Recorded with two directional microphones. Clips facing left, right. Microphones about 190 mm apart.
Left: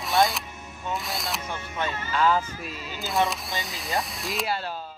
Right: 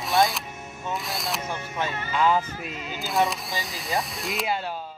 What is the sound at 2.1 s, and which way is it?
Speech, 15° right (ahead or behind).